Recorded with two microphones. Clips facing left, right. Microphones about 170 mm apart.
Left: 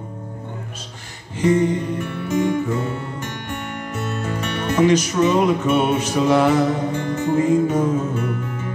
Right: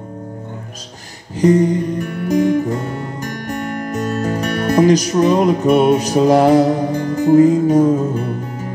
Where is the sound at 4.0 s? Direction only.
40° right (ahead or behind).